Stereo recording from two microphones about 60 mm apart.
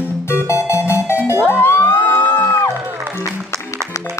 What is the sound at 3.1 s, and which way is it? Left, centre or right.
Music, right.